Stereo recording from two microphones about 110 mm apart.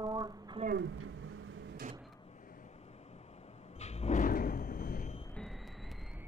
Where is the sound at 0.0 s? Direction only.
35° right (ahead or behind).